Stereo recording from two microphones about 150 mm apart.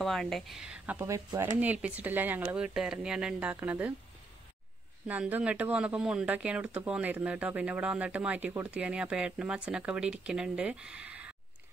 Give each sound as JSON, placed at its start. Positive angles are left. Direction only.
{"t": 0.0, "sound": "speech", "side_deg": 0}
{"t": 1.6, "sound": "speech", "side_deg": -10}
{"t": 5.0, "sound": "speech", "side_deg": -10}